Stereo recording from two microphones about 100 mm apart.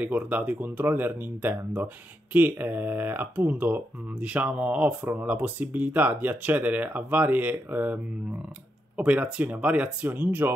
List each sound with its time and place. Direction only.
0.0 s speech: 15° right (ahead or behind)